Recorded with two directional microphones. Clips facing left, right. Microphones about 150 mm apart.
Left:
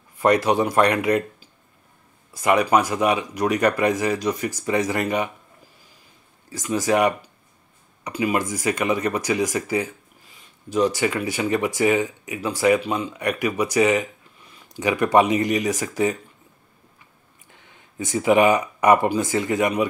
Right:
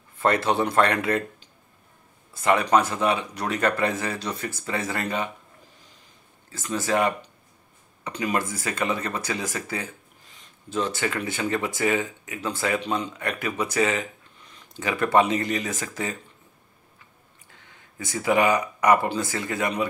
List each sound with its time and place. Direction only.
0.2 s speech: 15° left (ahead or behind)
6.5 s speech: 15° left (ahead or behind)
17.5 s speech: 20° left (ahead or behind)